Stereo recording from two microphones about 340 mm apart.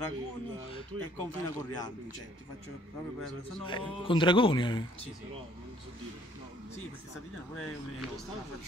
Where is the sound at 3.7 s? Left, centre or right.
Centre.